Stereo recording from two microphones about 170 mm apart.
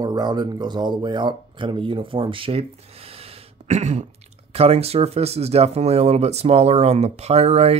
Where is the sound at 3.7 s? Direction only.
45° right (ahead or behind).